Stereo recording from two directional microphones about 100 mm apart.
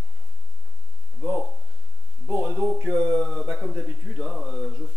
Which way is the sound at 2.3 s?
10° right (ahead or behind).